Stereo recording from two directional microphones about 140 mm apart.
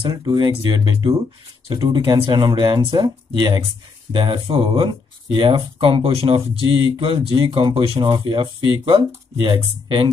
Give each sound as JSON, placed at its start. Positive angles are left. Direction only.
{"t": 0.1, "sound": "speech", "side_deg": -30}